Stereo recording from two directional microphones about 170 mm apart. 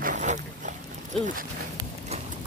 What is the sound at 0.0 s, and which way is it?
Dog, 45° right (ahead or behind).